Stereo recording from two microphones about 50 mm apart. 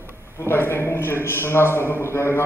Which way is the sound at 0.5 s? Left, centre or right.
Left.